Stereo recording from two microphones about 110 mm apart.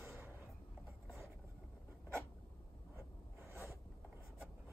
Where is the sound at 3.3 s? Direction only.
25° left (ahead or behind).